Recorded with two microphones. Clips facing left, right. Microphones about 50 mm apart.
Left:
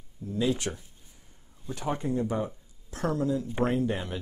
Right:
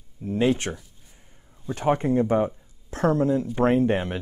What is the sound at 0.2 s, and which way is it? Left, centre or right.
Speech, right.